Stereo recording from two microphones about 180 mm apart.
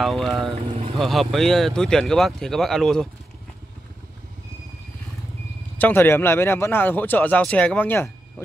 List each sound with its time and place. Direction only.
0.0 s speech: centre (ahead or behind)
5.8 s speech: 10° left (ahead or behind)